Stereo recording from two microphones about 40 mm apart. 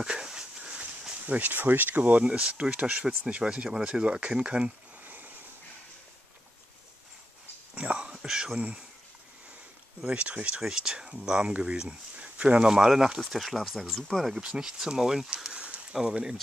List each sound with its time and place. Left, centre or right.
0.0 s a sound: centre
1.2 s speech: right
3.4 s speech: right
5.0 s vehicle: right
7.7 s whispering: right
8.5 s speech: right
10.1 s speech: right
10.6 s speech: centre
12.2 s a sound: right
12.5 s speech: centre
13.3 s speech: centre
14.4 s speech: centre